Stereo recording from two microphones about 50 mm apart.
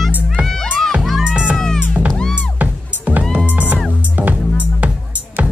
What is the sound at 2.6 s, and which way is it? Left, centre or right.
Music, right.